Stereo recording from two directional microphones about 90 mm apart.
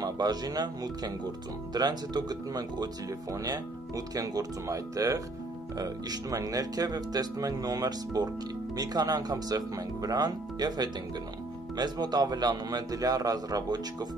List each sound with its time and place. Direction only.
0.0 s speech: 50° right (ahead or behind)